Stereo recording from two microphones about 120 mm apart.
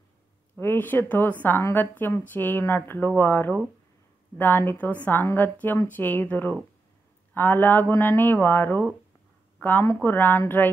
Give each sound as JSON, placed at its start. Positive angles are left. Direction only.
{"t": 0.6, "sound": "a woman's voice", "side_deg": 15}